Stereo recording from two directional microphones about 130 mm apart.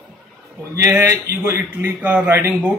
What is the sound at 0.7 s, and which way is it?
A man's voice, 20° right (ahead or behind).